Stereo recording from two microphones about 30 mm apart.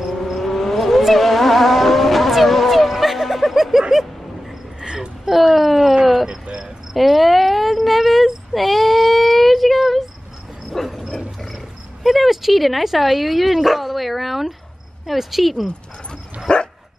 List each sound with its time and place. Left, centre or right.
0.0 s vehicle: centre
2.4 s music: centre
4.7 s a sound: right
5.3 s a sound: centre
6.2 s cricket: right
6.9 s a sound: centre
10.8 s dog: centre
11.5 s cricket: centre
15.0 s speech: centre
16.5 s dog: left